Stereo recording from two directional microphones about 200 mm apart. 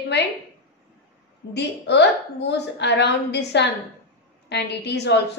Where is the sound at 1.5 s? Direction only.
55° left (ahead or behind).